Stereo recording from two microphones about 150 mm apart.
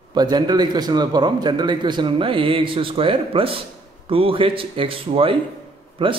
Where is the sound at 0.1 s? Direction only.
25° right (ahead or behind).